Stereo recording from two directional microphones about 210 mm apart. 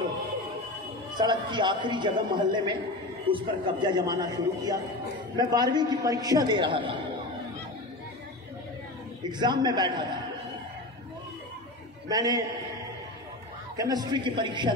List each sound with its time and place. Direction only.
1.1 s a man's voice: 20° right (ahead or behind)
9.3 s a man's voice: 20° right (ahead or behind)
12.1 s a man's voice: 20° right (ahead or behind)
13.7 s a man's voice: 20° right (ahead or behind)